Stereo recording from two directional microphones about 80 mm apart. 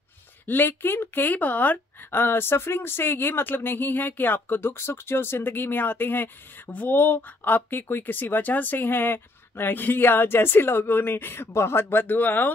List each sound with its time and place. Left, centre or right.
0.5 s a woman's voice: left